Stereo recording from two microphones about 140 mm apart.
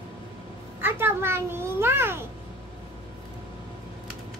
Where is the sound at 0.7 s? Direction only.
15° right (ahead or behind).